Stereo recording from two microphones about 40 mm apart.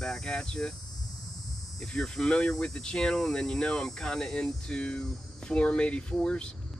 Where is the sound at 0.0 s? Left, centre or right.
Centre.